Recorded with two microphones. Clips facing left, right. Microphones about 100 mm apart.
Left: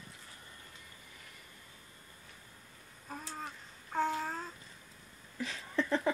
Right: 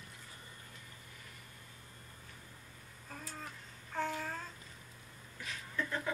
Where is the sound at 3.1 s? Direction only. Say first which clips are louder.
Left 4 dB; 25° left (ahead or behind).